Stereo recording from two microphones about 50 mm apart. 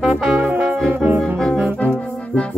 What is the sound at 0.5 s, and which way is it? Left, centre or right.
Music, right.